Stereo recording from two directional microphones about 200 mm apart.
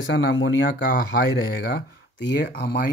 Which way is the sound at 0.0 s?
65° left (ahead or behind).